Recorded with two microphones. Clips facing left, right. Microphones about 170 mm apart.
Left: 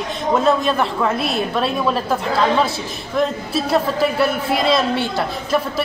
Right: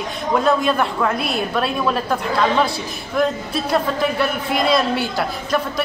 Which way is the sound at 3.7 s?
Centre (ahead or behind).